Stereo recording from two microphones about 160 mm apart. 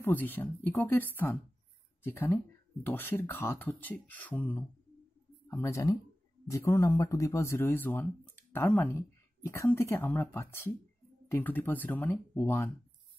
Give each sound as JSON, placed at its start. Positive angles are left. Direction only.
{"t": 0.0, "sound": "speech", "side_deg": 10}